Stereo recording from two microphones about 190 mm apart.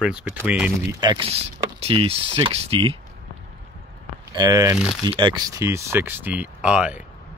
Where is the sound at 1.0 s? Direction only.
25° right (ahead or behind).